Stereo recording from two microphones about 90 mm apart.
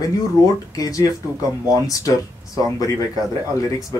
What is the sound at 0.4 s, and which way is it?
Speech, 40° left (ahead or behind).